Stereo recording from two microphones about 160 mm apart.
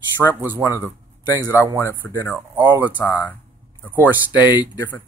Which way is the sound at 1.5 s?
15° right (ahead or behind).